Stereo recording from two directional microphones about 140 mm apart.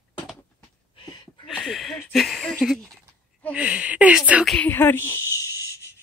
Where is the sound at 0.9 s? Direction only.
35° left (ahead or behind).